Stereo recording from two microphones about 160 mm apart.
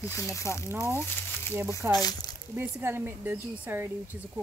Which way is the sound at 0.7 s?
15° right (ahead or behind).